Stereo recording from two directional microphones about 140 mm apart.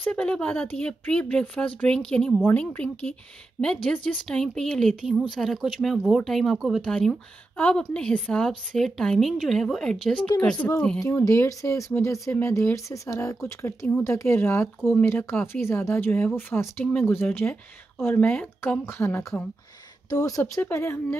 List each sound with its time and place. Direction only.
0.0 s speech: 10° left (ahead or behind)
11.0 s speech: 20° left (ahead or behind)